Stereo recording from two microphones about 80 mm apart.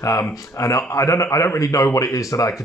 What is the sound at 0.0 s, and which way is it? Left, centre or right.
Speech, left.